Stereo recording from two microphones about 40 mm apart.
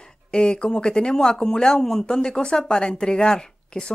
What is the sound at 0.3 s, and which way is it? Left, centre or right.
Speech, left.